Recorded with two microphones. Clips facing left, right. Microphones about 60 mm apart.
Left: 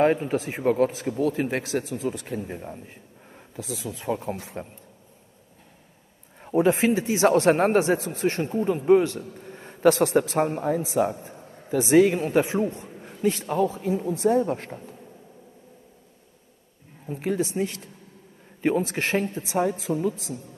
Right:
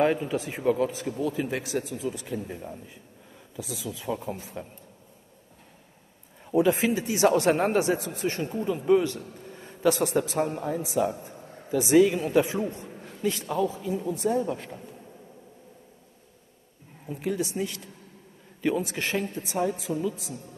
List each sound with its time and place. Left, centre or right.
0.4 s speech: left
2.4 s speech: left
3.5 s speech: left
6.4 s speech: left
6.9 s speech: left
9.3 s a sound: left
10.1 s a woman's voice: left
13.5 s speech: left
17.1 s speech: left